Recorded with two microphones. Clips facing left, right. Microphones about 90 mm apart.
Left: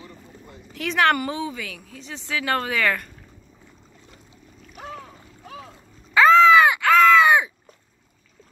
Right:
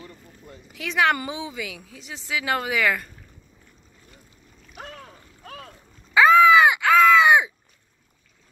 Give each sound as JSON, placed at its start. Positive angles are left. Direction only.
{"t": 0.7, "sound": "a woman's voice", "side_deg": -5}
{"t": 1.1, "sound": "a woman's voice", "side_deg": -20}
{"t": 4.8, "sound": "boat", "side_deg": 25}
{"t": 5.4, "sound": "boat", "side_deg": -55}
{"t": 6.1, "sound": "caw", "side_deg": -15}